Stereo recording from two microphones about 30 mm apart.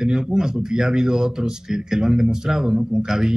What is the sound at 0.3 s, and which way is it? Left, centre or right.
A man's voice, centre.